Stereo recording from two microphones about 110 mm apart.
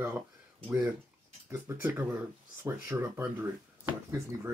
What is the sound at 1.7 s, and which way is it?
Speech, 20° right (ahead or behind).